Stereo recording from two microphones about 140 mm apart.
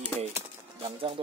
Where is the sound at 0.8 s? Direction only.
40° right (ahead or behind).